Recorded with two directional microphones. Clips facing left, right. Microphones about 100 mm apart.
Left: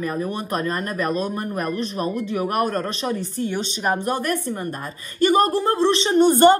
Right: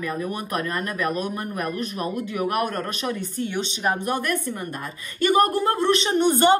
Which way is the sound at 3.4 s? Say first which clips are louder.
Even; 45° left (ahead or behind).